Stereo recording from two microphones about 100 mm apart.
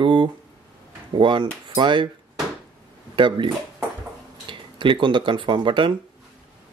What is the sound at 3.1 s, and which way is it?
Speech, 55° right (ahead or behind).